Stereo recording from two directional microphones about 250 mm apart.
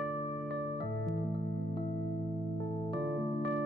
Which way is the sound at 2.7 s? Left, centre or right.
Left.